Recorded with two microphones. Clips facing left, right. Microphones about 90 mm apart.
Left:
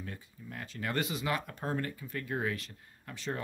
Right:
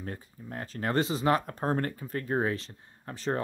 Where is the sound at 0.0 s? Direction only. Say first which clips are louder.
Right 5 dB; 40° right (ahead or behind).